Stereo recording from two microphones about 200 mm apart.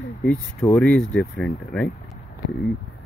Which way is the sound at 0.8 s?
Centre (ahead or behind).